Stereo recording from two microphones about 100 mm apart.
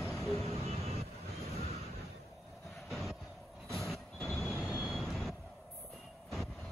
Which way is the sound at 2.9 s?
Centre (ahead or behind).